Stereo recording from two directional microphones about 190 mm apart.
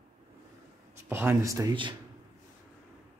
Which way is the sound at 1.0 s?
10° right (ahead or behind).